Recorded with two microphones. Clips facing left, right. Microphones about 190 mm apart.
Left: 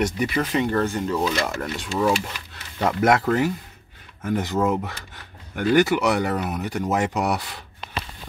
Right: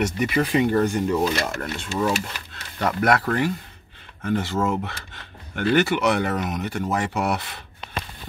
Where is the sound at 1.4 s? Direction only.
10° left (ahead or behind).